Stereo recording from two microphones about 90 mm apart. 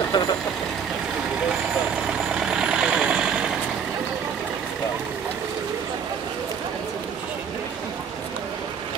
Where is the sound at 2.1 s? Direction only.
10° right (ahead or behind).